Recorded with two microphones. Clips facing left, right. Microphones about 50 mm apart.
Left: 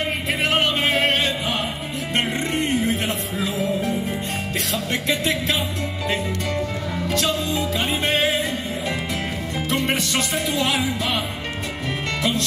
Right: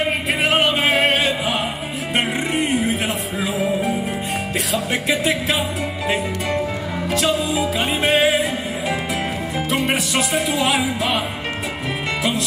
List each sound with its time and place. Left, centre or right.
0.0 s music: centre
7.1 s music: centre
12.2 s music: centre